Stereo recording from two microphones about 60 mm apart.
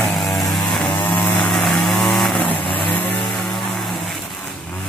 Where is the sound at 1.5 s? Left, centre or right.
Centre.